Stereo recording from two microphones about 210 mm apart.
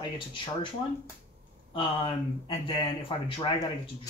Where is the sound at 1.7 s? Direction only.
25° left (ahead or behind).